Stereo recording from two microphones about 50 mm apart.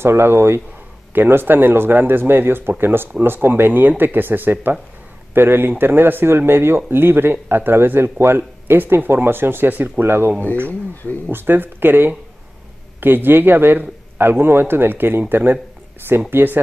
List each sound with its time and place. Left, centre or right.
0.0 s speech: right
10.7 s speech: left
11.2 s speech: right